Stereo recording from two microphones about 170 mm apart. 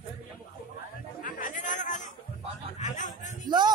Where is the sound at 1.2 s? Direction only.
50° left (ahead or behind).